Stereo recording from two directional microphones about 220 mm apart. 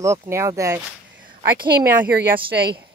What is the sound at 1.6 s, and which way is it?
Speech, 45° right (ahead or behind).